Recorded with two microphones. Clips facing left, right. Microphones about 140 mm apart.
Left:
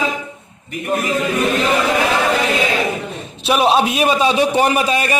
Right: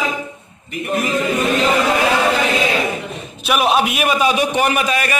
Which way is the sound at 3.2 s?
30° left (ahead or behind).